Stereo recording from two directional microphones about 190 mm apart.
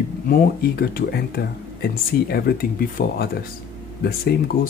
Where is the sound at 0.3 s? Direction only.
55° left (ahead or behind).